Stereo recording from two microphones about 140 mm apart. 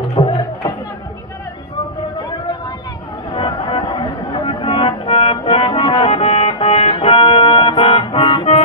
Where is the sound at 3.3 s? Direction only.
35° left (ahead or behind).